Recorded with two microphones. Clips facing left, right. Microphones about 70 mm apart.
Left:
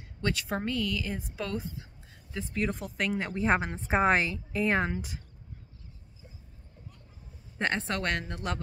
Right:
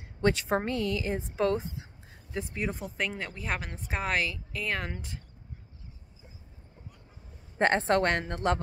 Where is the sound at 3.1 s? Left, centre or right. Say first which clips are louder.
Left 7 dB; centre.